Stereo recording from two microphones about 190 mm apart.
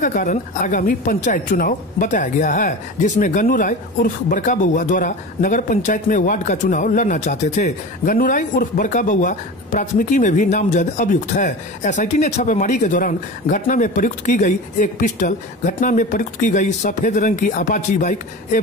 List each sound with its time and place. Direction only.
0.0 s a woman's voice: 45° left (ahead or behind)